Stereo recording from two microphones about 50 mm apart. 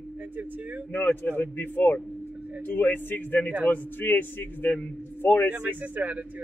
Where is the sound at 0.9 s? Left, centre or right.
Left.